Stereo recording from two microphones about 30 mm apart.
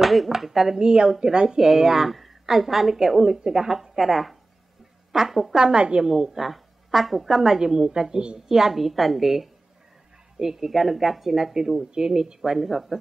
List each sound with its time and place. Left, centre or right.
0.0 s speech: centre
0.7 s speech: right
1.6 s a woman's voice: centre
5.6 s speech: right
6.0 s a woman's voice: centre
7.6 s speech: right
8.5 s a woman's voice: centre
10.4 s speech: centre
10.7 s a woman's voice: centre
11.9 s speech: right
12.4 s speech: centre